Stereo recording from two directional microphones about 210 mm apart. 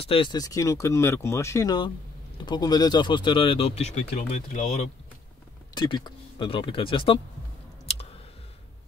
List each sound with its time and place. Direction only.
0.0 s speech: 25° left (ahead or behind)
5.8 s speech: 20° left (ahead or behind)